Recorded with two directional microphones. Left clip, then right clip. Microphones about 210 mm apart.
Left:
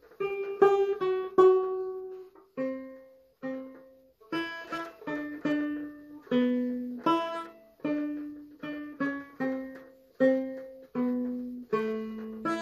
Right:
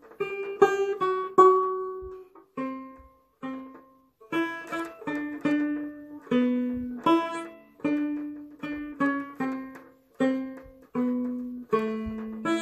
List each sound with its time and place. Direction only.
0.2 s music: 45° right (ahead or behind)